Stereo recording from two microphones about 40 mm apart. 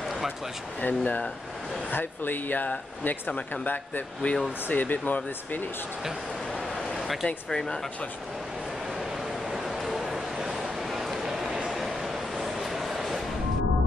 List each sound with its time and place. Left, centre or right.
0.7 s speech: left
1.9 s speech: left
4.2 s speech: left
4.6 s speech: left
7.0 s a sound: centre
7.4 s speech: centre
9.5 s a sound: centre
12.6 s train: centre